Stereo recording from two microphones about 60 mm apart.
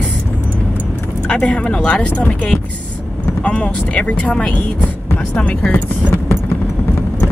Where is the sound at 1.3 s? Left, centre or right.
Centre.